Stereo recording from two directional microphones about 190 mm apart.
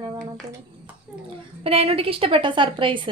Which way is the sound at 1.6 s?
30° right (ahead or behind).